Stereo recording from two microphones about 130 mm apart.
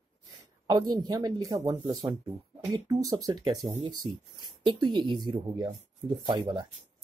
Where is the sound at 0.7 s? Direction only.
30° right (ahead or behind).